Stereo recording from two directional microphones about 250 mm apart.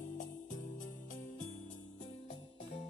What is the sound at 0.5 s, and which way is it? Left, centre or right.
Music, left.